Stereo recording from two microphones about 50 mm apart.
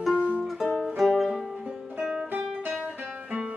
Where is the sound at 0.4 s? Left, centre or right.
Centre.